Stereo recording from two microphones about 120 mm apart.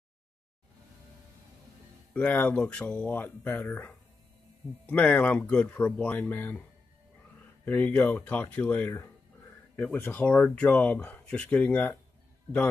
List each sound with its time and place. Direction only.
2.1 s speech: 10° left (ahead or behind)
7.6 s speech: 15° left (ahead or behind)